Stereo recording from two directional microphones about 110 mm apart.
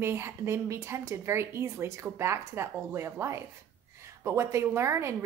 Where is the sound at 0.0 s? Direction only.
25° right (ahead or behind).